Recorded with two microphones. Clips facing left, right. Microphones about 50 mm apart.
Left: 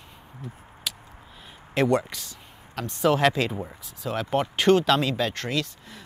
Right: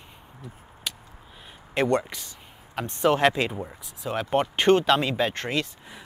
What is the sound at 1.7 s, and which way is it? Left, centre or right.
Speech, centre.